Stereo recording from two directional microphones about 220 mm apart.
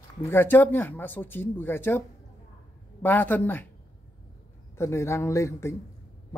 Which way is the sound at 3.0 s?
10° left (ahead or behind).